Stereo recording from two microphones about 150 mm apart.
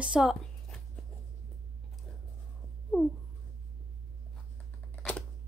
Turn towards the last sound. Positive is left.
turn(degrees=5)  # may be behind; listen again after turning